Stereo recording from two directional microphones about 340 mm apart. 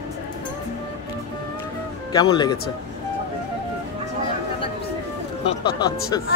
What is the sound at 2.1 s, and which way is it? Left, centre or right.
Speech, centre.